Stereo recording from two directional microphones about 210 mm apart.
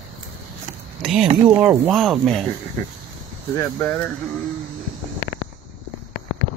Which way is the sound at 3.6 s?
10° left (ahead or behind).